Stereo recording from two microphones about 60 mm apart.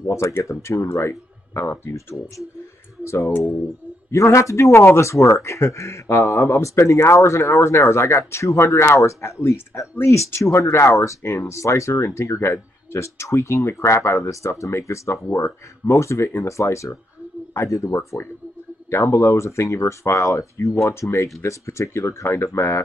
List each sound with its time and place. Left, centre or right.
0.1 s speech: left
2.0 s speech: left